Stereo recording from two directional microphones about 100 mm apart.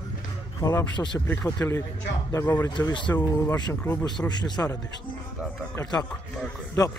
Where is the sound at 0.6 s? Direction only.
35° left (ahead or behind).